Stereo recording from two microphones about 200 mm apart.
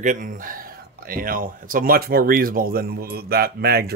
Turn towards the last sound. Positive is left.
turn(degrees=-50)  # may be behind; listen again after turning